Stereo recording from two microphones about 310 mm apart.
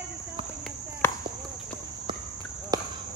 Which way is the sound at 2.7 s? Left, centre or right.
Centre.